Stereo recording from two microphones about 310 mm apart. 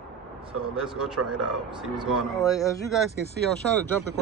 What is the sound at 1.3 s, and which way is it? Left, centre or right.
Speech, centre.